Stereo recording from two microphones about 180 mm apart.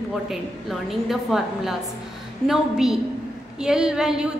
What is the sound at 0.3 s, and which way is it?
A woman's voice, centre (ahead or behind).